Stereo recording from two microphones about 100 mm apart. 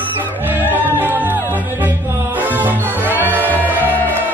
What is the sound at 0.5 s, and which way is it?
Music, 20° right (ahead or behind).